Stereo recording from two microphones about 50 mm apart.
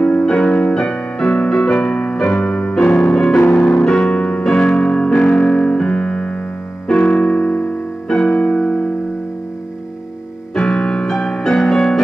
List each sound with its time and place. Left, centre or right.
0.2 s music: centre
2.2 s keyboard: left
2.7 s music: centre
3.3 s music: left
3.8 s music: centre
10.6 s music: centre